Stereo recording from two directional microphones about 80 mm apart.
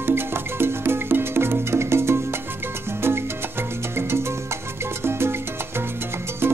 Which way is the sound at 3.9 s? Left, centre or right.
Right.